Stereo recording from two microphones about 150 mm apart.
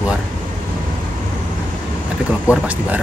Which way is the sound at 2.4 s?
10° right (ahead or behind).